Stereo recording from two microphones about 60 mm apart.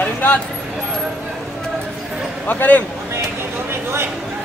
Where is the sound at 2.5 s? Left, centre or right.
Left.